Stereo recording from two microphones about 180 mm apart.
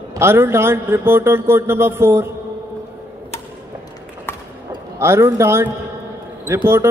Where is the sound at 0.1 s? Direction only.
15° right (ahead or behind).